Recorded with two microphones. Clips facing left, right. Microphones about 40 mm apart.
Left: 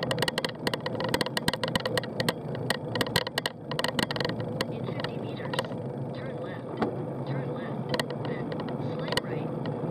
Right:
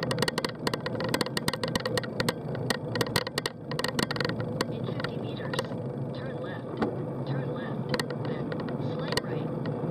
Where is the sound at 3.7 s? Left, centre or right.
Left.